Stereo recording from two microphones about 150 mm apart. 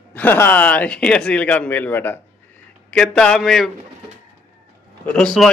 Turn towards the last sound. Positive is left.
turn(degrees=5)  # may be behind; listen again after turning